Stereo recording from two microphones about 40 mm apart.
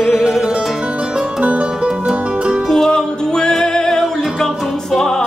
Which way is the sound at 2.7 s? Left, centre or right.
Centre.